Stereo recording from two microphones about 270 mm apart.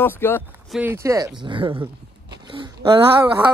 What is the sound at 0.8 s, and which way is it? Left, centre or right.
Speech, centre.